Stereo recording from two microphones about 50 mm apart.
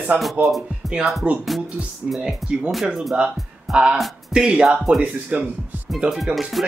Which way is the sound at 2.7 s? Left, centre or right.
Centre.